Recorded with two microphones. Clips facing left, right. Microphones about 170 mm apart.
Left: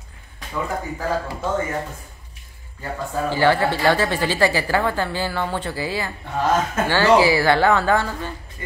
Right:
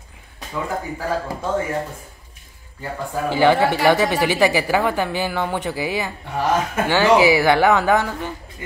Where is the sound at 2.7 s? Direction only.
15° right (ahead or behind).